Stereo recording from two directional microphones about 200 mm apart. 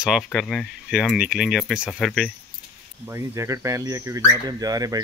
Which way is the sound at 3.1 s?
15° right (ahead or behind).